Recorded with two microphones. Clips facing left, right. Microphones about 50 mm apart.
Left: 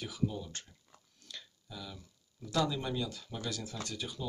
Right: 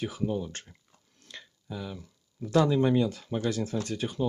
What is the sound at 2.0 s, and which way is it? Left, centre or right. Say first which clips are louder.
Speech: right 10 dB; right.